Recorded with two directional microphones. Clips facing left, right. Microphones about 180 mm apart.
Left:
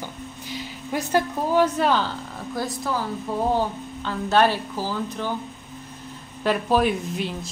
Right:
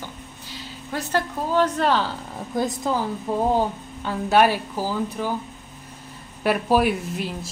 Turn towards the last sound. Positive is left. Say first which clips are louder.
# left 1 dB
turn(degrees=-5)  # may be behind; listen again after turning